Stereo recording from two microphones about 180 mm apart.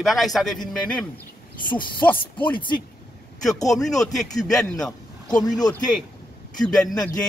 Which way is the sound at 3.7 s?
Centre (ahead or behind).